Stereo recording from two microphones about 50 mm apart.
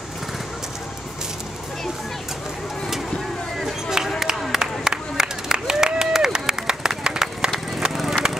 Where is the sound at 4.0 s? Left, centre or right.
Centre.